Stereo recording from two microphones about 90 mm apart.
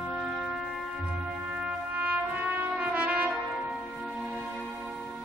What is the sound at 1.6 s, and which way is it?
Brass instrument, 15° right (ahead or behind).